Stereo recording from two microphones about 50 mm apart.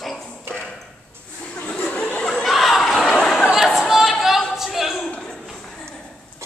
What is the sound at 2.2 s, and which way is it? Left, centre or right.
Chuckle, centre.